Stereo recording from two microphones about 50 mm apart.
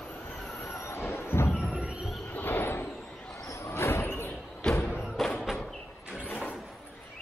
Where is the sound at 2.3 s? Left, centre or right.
Left.